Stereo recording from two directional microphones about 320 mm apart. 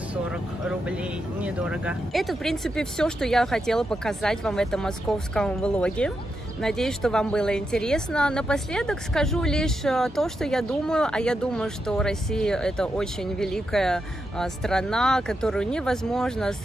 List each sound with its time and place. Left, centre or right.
0.1 s a woman's voice: centre